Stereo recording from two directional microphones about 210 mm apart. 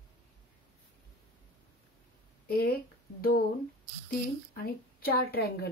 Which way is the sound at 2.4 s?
45° left (ahead or behind).